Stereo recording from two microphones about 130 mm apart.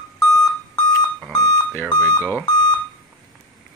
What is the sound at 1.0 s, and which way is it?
Alarm clock, 5° left (ahead or behind).